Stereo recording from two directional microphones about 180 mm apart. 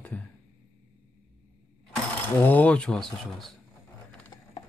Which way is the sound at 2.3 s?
10° left (ahead or behind).